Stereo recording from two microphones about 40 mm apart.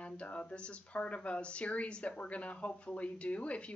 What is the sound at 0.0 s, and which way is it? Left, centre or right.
Speech, left.